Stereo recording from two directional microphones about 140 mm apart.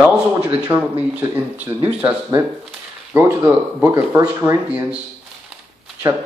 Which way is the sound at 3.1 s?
15° right (ahead or behind).